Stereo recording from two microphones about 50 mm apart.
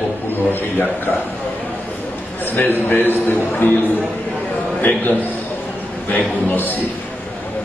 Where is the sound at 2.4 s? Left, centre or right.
Left.